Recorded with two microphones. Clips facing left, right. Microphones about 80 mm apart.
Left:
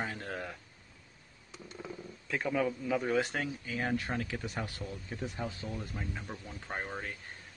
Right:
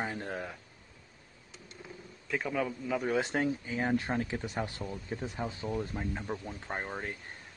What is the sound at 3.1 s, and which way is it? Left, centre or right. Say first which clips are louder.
Speech: right 2 dB; right.